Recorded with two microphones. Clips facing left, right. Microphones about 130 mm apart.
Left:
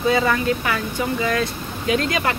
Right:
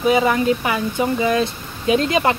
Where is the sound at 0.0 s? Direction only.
20° right (ahead or behind).